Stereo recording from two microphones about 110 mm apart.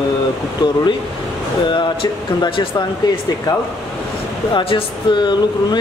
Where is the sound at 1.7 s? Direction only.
45° left (ahead or behind).